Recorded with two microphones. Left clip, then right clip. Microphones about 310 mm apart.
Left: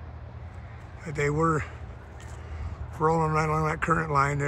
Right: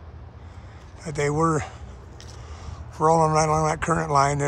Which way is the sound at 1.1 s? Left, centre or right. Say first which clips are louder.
Right 3 dB; centre.